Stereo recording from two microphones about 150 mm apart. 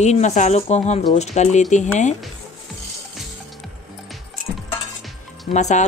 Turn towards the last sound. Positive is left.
turn(degrees=50)  # may be behind; listen again after turning